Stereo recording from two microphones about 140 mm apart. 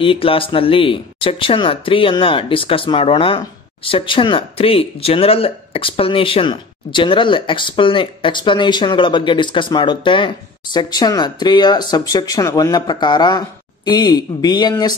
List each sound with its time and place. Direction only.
0.0 s speech: 40° left (ahead or behind)